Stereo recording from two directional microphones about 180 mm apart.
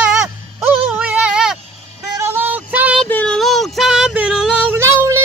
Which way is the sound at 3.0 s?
5° left (ahead or behind).